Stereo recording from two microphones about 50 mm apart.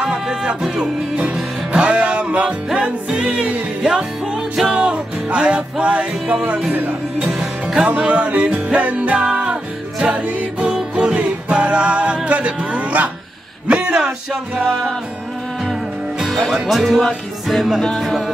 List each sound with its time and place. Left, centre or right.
0.0 s music: centre
6.4 s speech: right
6.7 s speech: right
7.2 s music: right
10.7 s music: centre
14.7 s music: centre
15.6 s music: centre
16.3 s music: centre